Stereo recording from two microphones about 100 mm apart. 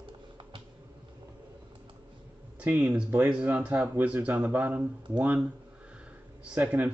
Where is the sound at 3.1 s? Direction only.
20° right (ahead or behind).